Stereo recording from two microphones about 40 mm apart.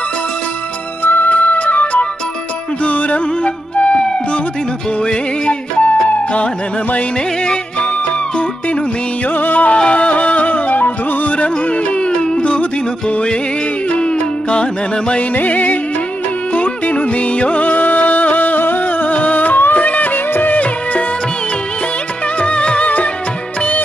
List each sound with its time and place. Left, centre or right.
1.0 s music: left
1.3 s music: left
5.0 s music: left
9.3 s music: left
9.8 s music: left
13.9 s music: left
15.3 s music: left
22.4 s music: left